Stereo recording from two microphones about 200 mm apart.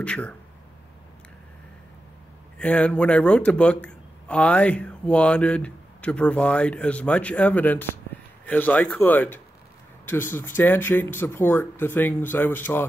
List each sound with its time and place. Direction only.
0.0 s a man's voice: 5° left (ahead or behind)
2.6 s a man's voice: 5° left (ahead or behind)